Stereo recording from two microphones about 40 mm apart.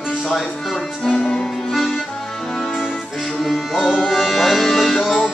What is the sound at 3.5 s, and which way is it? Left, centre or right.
Music, centre.